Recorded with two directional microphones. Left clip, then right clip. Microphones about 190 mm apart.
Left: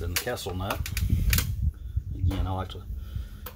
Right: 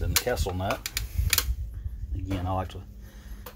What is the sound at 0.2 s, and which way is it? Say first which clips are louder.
Speech: right 2 dB; 35° right (ahead or behind).